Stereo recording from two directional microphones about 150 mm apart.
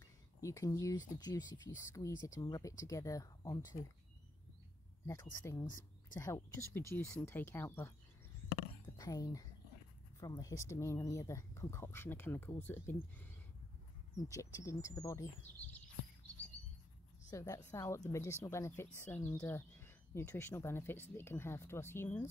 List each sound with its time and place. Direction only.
0.4 s speech: 20° left (ahead or behind)
5.0 s speech: 20° left (ahead or behind)
8.8 s whispering: 25° left (ahead or behind)
10.2 s speech: 25° left (ahead or behind)
17.3 s a woman's voice: 20° left (ahead or behind)